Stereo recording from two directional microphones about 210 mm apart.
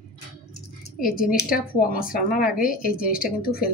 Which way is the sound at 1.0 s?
40° left (ahead or behind).